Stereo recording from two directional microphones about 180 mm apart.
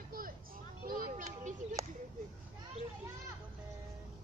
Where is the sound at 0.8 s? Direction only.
55° right (ahead or behind).